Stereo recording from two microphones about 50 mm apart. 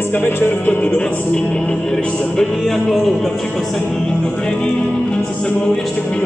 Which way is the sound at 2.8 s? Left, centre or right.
Centre.